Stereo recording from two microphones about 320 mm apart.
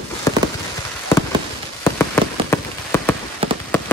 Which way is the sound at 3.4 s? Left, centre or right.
Centre.